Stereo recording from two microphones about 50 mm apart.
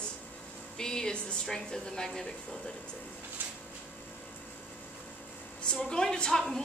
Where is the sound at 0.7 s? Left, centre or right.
Centre.